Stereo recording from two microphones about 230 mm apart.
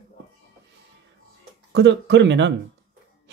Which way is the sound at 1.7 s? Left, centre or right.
Right.